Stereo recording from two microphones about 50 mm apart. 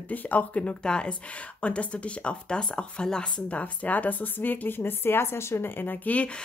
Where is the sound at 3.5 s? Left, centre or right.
Left.